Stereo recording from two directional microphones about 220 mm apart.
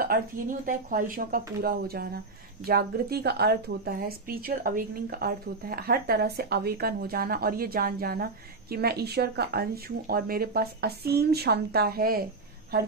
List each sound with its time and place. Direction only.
0.0 s speech: 40° right (ahead or behind)